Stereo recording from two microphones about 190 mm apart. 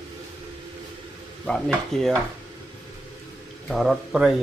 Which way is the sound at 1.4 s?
5° left (ahead or behind).